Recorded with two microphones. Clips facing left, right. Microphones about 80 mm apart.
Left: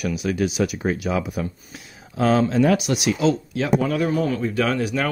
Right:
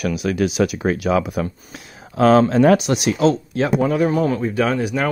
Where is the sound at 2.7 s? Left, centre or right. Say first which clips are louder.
Right 3 dB; right.